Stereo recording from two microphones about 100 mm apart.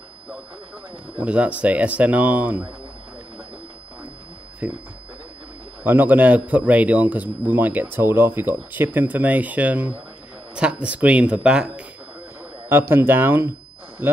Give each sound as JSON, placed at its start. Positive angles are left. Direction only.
{"t": 1.1, "sound": "a man's voice", "side_deg": -15}
{"t": 4.6, "sound": "a man's voice", "side_deg": -15}
{"t": 5.9, "sound": "a man's voice", "side_deg": -20}
{"t": 12.6, "sound": "a man's voice", "side_deg": -25}